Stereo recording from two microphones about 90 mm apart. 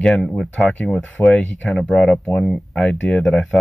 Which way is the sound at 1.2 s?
25° left (ahead or behind).